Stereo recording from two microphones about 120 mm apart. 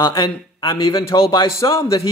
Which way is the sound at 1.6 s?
25° left (ahead or behind).